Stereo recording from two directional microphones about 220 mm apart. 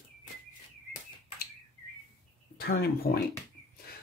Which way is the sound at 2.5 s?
45° left (ahead or behind).